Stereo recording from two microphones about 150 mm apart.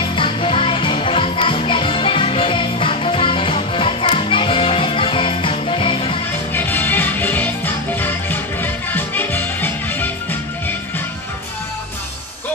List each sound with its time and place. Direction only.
0.0 s music: 35° left (ahead or behind)
6.5 s music: 15° left (ahead or behind)